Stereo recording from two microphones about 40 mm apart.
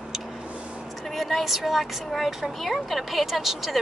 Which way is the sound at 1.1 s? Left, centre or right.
Centre.